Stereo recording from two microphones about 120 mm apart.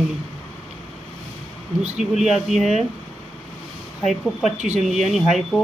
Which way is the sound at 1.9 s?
Centre (ahead or behind).